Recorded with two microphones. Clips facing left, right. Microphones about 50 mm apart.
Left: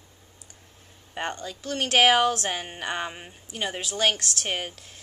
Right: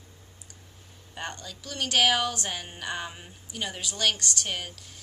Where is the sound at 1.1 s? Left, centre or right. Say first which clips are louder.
Left 6 dB; left.